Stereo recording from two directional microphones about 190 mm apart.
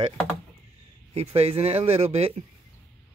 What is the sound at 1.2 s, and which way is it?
Speech, 35° right (ahead or behind).